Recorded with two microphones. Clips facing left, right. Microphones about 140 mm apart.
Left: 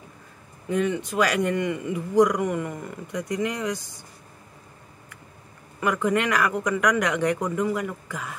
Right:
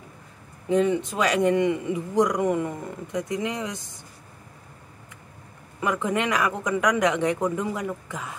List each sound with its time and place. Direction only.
0.7 s speech: 25° right (ahead or behind)
5.8 s speech: 20° right (ahead or behind)